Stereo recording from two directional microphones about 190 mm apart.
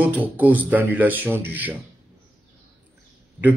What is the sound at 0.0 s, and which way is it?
Speech, 10° right (ahead or behind).